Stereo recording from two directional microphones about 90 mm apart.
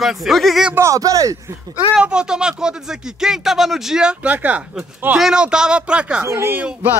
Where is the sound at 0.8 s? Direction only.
40° right (ahead or behind).